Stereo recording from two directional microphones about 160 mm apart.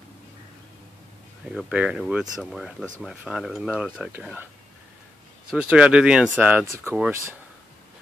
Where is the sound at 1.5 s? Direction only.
5° right (ahead or behind).